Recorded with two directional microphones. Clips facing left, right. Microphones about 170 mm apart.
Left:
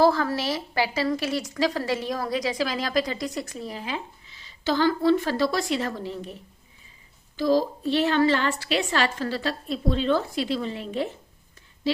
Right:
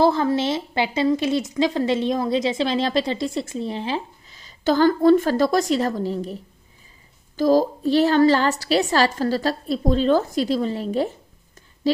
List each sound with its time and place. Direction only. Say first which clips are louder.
0.0 s a woman's voice: right 3 dB; 20° right (ahead or behind)
4.4 s a woman's voice: right 6 dB; 45° right (ahead or behind)